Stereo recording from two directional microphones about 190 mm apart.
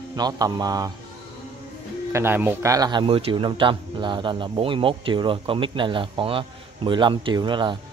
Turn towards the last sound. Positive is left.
turn(degrees=-25)  # may be behind; listen again after turning